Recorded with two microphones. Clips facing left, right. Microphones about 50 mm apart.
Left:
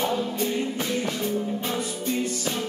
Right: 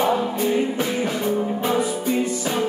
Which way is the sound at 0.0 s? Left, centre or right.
Centre.